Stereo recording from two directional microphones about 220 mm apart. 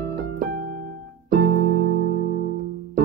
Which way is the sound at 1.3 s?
45° right (ahead or behind).